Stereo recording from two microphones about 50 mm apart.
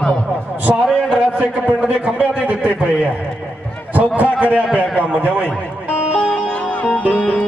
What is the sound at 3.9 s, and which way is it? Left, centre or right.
A man's voice, right.